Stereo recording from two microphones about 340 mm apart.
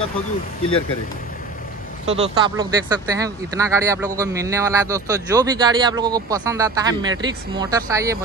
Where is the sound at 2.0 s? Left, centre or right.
Centre.